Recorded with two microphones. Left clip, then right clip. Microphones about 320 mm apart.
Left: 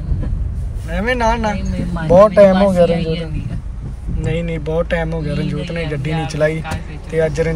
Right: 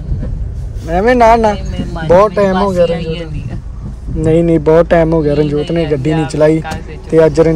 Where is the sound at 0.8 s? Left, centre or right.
Right.